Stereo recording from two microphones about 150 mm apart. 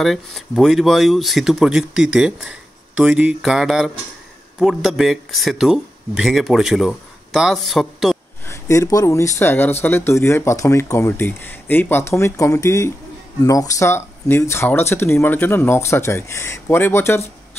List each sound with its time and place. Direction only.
0.0 s speech: centre (ahead or behind)
8.5 s speech: 20° left (ahead or behind)